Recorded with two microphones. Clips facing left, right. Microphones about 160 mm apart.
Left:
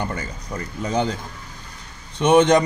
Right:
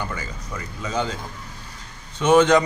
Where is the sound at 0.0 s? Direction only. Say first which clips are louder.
Left 3 dB; 40° left (ahead or behind).